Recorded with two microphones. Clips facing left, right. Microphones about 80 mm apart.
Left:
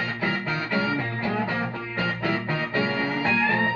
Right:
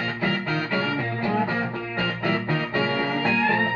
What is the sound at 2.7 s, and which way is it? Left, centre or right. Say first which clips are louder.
Music: even; right.